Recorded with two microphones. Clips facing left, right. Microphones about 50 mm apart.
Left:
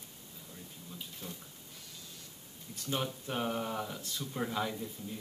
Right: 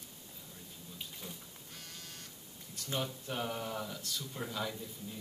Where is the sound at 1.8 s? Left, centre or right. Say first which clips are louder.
Right 2 dB; right.